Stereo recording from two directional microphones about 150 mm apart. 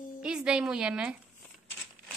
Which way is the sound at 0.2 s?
5° right (ahead or behind).